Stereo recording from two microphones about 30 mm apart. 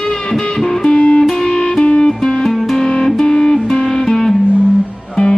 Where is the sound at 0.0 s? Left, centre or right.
Left.